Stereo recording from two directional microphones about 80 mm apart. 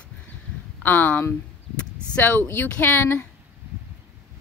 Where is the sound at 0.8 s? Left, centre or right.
Left.